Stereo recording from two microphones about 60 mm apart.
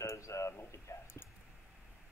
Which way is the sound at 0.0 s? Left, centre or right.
Left.